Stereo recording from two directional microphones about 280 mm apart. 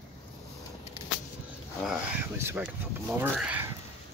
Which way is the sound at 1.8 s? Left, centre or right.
Centre.